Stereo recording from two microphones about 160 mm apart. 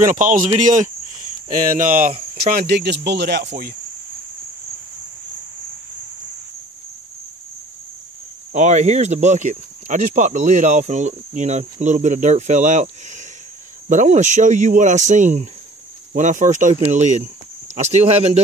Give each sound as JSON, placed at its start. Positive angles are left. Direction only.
{"t": 0.0, "sound": "speech", "side_deg": -55}
{"t": 1.5, "sound": "speech", "side_deg": -55}
{"t": 2.5, "sound": "speech", "side_deg": -90}
{"t": 8.5, "sound": "speech", "side_deg": -45}